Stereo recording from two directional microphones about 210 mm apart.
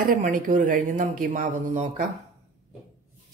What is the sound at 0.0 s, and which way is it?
Speech, 40° right (ahead or behind).